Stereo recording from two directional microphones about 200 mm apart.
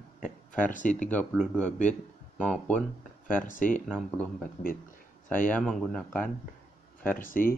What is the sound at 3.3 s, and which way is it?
Speech, 40° left (ahead or behind).